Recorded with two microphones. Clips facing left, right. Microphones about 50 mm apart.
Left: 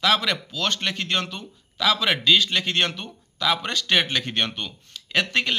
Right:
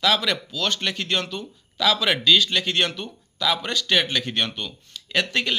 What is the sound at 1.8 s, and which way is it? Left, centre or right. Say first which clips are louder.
A man's voice: right 1 dB; centre.